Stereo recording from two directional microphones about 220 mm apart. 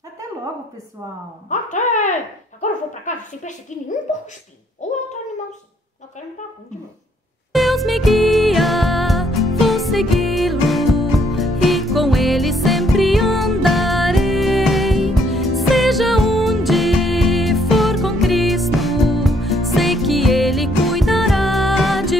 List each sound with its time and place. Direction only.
1.5 s a woman's voice: 35° left (ahead or behind)
7.5 s music: centre (ahead or behind)